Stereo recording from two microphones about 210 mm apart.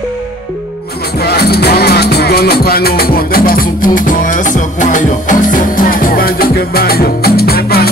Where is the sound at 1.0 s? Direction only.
50° left (ahead or behind).